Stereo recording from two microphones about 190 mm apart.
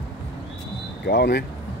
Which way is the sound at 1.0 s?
60° left (ahead or behind).